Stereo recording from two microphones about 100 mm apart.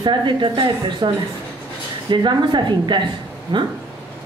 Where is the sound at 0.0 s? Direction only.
50° right (ahead or behind).